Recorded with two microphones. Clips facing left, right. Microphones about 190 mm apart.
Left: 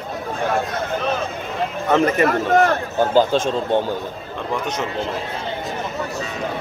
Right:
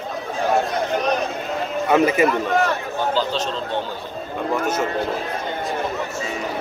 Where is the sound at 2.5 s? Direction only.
50° left (ahead or behind).